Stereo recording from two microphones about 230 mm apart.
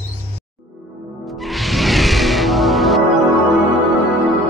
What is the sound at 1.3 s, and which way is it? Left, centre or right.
Music, centre.